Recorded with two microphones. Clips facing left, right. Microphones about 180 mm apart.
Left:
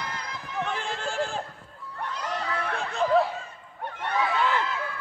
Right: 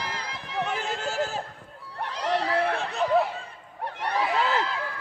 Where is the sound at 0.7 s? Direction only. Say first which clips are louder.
Right 1 dB; 5° right (ahead or behind).